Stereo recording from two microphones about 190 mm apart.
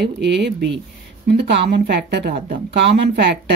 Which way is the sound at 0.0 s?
60° right (ahead or behind).